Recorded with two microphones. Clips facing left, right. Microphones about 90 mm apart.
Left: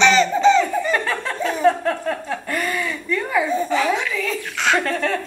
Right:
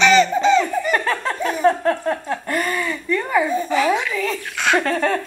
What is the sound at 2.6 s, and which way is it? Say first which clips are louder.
Speech: right 1 dB; 5° right (ahead or behind).